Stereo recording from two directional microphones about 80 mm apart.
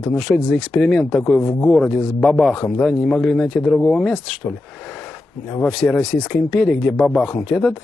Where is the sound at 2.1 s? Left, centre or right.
Centre.